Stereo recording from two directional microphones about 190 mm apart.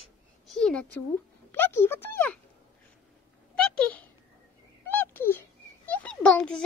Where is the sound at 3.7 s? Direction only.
5° left (ahead or behind).